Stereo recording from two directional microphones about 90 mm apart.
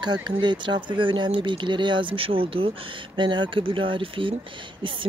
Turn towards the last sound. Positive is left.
turn(degrees=-65)  # may be behind; listen again after turning